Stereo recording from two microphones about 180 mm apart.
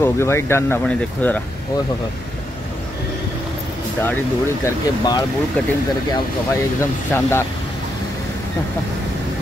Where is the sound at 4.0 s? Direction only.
15° left (ahead or behind).